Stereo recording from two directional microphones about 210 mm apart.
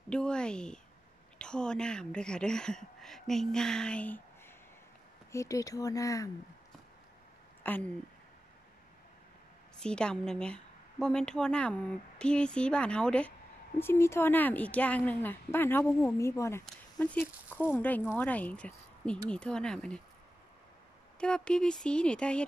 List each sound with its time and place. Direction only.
0.1 s speech: 5° left (ahead or behind)
5.3 s speech: 15° left (ahead or behind)
7.6 s speech: 10° left (ahead or behind)
9.8 s a woman's voice: 5° left (ahead or behind)
21.2 s speech: 5° left (ahead or behind)